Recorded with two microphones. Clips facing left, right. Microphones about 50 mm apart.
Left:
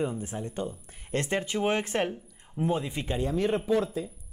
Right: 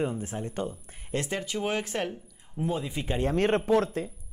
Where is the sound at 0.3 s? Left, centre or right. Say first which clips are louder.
Right 1 dB; centre.